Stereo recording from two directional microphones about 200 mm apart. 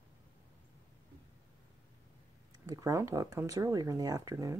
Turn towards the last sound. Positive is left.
turn(degrees=-15)  # may be behind; listen again after turning